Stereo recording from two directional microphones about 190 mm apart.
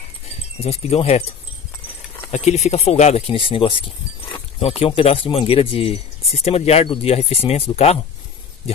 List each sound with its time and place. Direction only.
0.6 s speech: 30° left (ahead or behind)
2.3 s speech: 35° left (ahead or behind)